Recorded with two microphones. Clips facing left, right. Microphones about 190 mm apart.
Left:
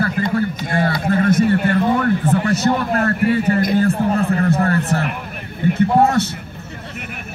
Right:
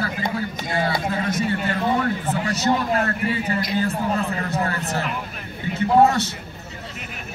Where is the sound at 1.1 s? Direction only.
55° left (ahead or behind).